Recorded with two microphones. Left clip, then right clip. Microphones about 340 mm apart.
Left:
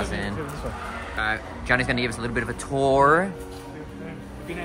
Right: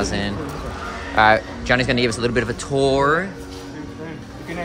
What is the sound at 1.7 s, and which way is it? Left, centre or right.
Speech, centre.